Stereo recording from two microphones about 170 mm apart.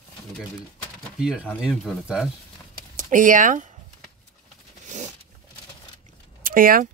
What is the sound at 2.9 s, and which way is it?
Speech, 50° right (ahead or behind).